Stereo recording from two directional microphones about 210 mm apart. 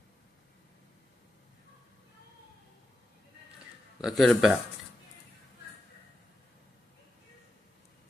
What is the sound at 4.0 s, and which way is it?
Speech, centre (ahead or behind).